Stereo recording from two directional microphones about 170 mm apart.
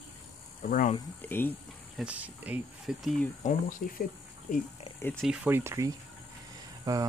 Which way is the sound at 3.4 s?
50° left (ahead or behind).